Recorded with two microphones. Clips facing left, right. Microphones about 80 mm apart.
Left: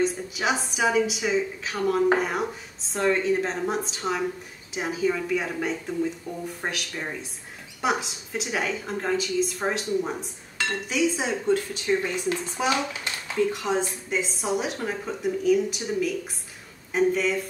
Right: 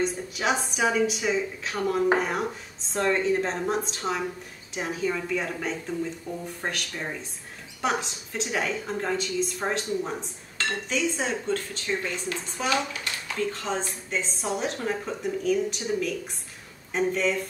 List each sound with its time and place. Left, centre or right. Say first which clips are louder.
0.0 s speech: left 2 dB; centre